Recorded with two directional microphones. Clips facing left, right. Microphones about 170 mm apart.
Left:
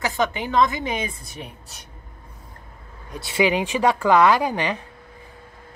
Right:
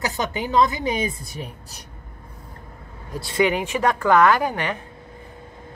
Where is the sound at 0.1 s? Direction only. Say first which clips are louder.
Even; 40° right (ahead or behind).